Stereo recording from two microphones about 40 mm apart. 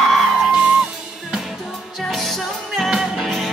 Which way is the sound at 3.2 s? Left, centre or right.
Centre.